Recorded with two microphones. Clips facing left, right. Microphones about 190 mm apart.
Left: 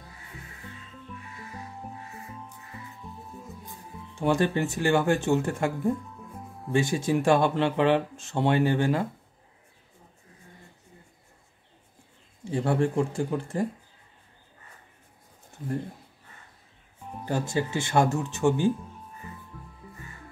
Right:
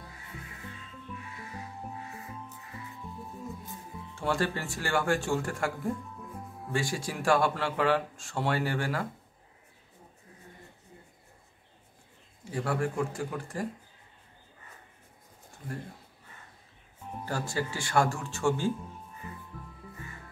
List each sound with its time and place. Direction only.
4.1 s speech: 20° left (ahead or behind)
12.4 s speech: 25° left (ahead or behind)
17.2 s speech: 20° left (ahead or behind)